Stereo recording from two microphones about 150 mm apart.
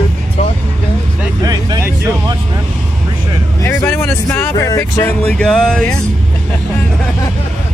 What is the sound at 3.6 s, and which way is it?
Speech, 15° left (ahead or behind).